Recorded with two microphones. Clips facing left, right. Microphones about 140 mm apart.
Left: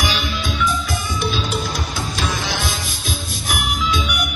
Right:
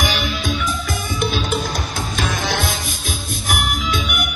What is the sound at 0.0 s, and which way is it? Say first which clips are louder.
Music: right 1 dB; 50° right (ahead or behind).